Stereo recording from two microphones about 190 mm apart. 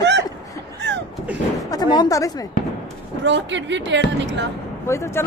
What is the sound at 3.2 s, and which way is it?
Speech, 70° right (ahead or behind).